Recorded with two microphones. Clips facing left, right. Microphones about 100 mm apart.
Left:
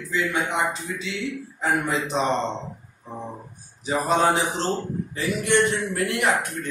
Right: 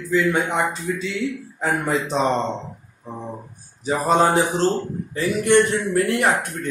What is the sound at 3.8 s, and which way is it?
Speech, 40° right (ahead or behind).